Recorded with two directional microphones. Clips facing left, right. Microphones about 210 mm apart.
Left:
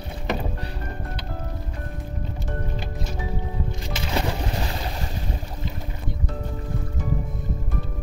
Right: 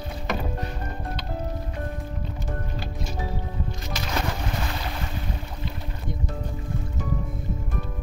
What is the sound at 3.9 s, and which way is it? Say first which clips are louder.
Music: left 3 dB; 25° left (ahead or behind).